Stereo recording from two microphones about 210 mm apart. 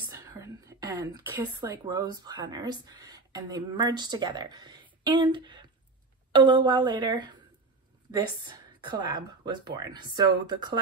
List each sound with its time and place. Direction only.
0.1 s a woman's voice: 15° right (ahead or behind)